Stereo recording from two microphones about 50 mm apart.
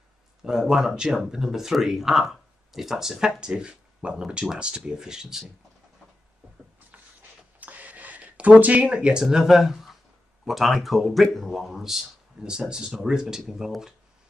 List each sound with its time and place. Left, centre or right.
0.4 s speech: centre
7.6 s a sound: right
9.2 s speech: centre